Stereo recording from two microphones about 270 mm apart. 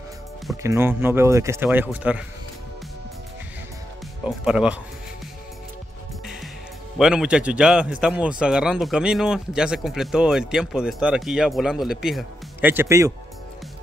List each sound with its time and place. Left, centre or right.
0.6 s speech: centre
4.2 s a man's voice: centre
7.0 s a man's voice: centre